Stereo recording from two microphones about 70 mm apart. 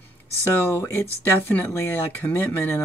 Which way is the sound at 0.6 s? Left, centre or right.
Left.